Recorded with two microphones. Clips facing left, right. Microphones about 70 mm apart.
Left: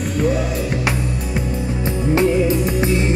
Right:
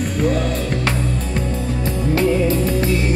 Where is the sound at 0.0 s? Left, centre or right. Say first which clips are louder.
Even; centre.